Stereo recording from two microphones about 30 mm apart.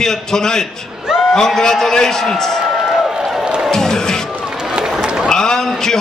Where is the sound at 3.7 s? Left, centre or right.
Centre.